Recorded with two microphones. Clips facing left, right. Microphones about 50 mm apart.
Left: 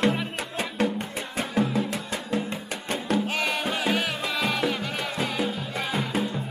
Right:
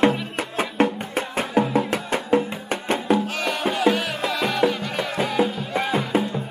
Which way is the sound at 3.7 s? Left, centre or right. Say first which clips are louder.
Right 5 dB; centre.